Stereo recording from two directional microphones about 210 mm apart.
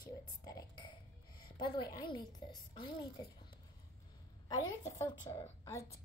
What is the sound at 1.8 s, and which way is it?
A woman's voice, 20° left (ahead or behind).